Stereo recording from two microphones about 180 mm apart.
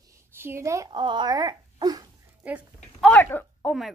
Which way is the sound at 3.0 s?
5° left (ahead or behind).